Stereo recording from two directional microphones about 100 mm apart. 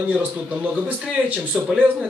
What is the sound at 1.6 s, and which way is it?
Speech, 5° right (ahead or behind).